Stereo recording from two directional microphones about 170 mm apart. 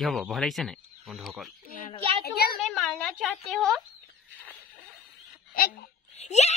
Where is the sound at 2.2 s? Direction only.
65° left (ahead or behind).